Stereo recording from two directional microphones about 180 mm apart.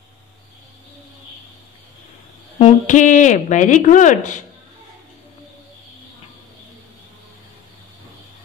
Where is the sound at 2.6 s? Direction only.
40° left (ahead or behind).